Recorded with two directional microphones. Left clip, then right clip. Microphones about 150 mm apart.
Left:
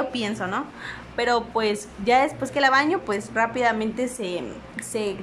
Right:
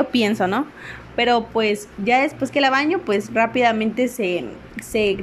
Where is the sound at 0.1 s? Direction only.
25° right (ahead or behind).